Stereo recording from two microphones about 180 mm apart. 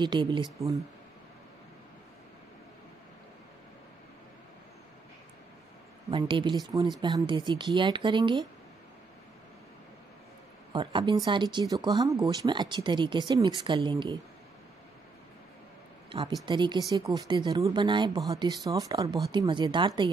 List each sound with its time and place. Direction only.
0.0 s speech: 25° right (ahead or behind)
6.0 s speech: 30° right (ahead or behind)
10.7 s speech: 25° right (ahead or behind)
16.1 s speech: 30° right (ahead or behind)